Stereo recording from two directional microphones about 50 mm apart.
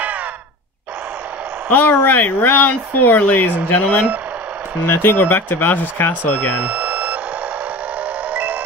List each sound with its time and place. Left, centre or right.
1.7 s speech: left
6.6 s alarm clock: right
8.3 s a sound: right